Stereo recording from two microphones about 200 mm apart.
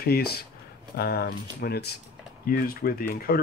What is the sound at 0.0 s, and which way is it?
Speech, 50° left (ahead or behind).